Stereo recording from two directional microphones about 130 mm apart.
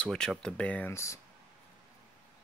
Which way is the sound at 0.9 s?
20° left (ahead or behind).